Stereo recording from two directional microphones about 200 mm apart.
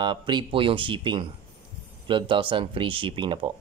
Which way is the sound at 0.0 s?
25° right (ahead or behind).